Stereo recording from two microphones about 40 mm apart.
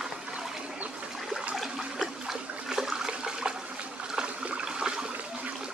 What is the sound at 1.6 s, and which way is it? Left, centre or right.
Toilet flush, centre.